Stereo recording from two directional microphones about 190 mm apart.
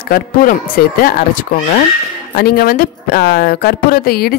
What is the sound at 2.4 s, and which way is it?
Speech, 55° left (ahead or behind).